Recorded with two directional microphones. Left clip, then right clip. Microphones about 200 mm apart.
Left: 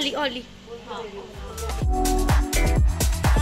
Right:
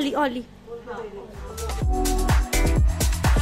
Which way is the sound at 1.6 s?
Centre (ahead or behind).